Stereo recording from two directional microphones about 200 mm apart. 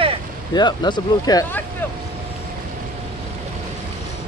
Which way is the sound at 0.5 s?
20° left (ahead or behind).